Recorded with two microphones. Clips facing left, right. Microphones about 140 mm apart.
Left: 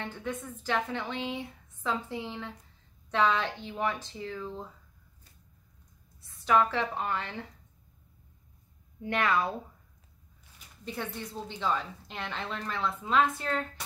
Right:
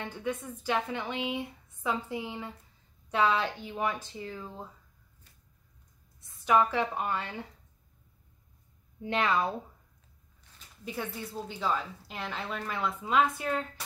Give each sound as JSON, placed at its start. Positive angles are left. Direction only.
{"t": 0.0, "sound": "a woman's voice", "side_deg": -15}
{"t": 6.4, "sound": "a woman's voice", "side_deg": -15}
{"t": 9.0, "sound": "a woman's voice", "side_deg": -15}
{"t": 10.9, "sound": "a woman's voice", "side_deg": -5}